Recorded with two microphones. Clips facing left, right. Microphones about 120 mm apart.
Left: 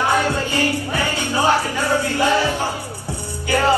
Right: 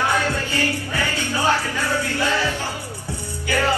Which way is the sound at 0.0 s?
15° left (ahead or behind).